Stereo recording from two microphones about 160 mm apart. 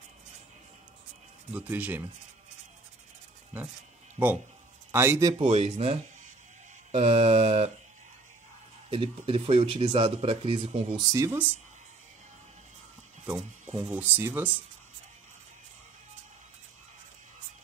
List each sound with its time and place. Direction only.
1.5 s speech: 10° right (ahead or behind)
4.9 s speech: 15° right (ahead or behind)
5.4 s speech: 35° right (ahead or behind)
8.9 s speech: 35° right (ahead or behind)
11.0 s speech: 20° right (ahead or behind)
13.7 s speech: 30° right (ahead or behind)
13.9 s speech: 10° right (ahead or behind)